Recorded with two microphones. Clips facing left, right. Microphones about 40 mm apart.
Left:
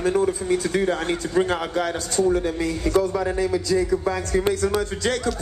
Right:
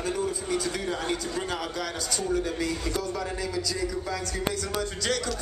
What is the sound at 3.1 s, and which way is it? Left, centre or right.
A man's voice, centre.